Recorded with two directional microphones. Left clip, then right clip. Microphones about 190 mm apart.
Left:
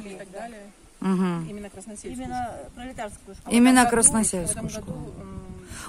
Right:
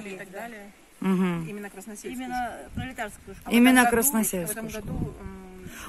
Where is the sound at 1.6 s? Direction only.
20° left (ahead or behind).